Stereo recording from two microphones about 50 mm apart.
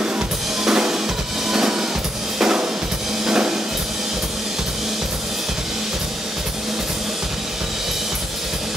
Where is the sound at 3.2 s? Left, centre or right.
Centre.